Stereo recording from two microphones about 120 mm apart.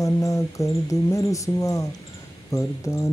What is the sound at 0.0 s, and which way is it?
Speech, 25° left (ahead or behind).